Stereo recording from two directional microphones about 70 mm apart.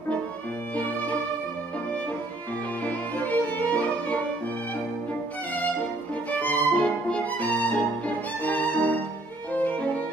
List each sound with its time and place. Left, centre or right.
0.7 s music: left
2.8 s music: left
6.3 s violin: left